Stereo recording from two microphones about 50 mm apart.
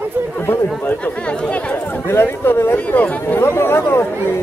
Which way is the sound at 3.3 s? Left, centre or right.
Left.